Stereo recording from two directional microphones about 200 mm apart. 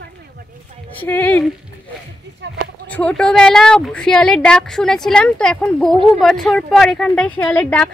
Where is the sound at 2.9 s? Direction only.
5° left (ahead or behind).